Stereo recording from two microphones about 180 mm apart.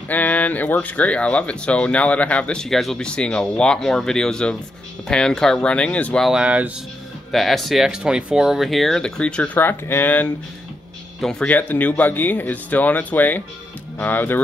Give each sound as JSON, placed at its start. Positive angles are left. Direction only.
{"t": 0.1, "sound": "speech", "side_deg": 10}